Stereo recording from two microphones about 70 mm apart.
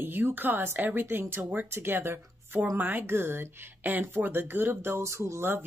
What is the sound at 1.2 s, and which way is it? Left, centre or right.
Speech, right.